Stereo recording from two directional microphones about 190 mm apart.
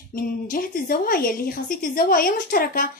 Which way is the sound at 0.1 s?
50° left (ahead or behind).